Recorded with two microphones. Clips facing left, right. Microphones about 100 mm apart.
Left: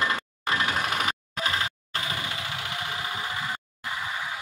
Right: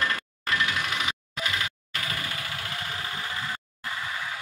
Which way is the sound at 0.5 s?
40° left (ahead or behind).